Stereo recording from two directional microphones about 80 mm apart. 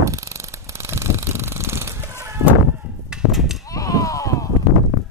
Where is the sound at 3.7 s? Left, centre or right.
Left.